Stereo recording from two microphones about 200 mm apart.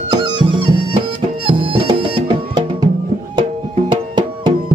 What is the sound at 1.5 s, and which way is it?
Music, 25° right (ahead or behind).